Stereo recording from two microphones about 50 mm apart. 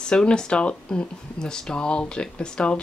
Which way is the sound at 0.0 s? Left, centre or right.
Centre.